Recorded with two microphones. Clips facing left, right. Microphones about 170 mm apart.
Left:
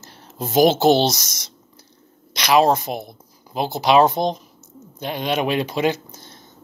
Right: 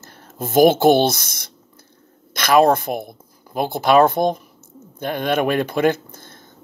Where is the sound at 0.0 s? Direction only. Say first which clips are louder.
Right 1 dB; 50° right (ahead or behind).